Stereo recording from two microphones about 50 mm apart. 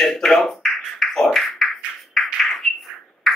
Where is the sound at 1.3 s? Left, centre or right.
Centre.